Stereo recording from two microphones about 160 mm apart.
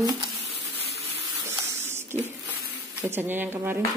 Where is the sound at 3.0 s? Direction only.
15° right (ahead or behind).